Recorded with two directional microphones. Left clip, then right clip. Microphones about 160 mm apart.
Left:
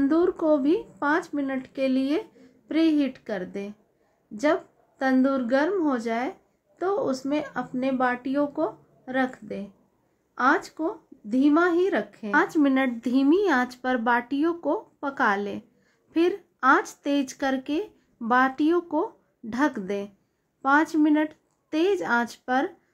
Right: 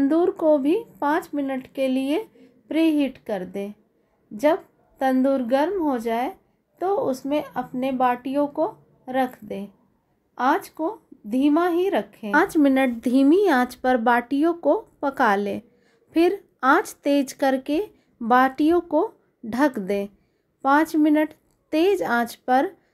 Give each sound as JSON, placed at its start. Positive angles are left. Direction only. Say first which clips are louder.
{"t": 0.0, "sound": "speech", "louder": "right 3 dB", "side_deg": -15}
{"t": 12.3, "sound": "speech", "louder": "right 3 dB", "side_deg": -30}